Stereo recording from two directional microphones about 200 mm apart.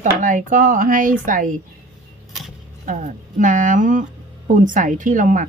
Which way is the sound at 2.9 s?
40° right (ahead or behind).